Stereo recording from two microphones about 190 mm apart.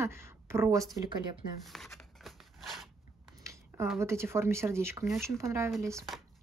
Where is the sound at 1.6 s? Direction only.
Centre (ahead or behind).